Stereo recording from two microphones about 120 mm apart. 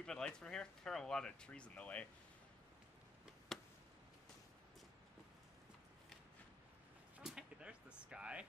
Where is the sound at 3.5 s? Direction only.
Centre (ahead or behind).